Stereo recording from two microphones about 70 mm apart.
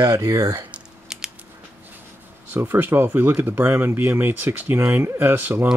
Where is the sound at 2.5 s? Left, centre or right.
Right.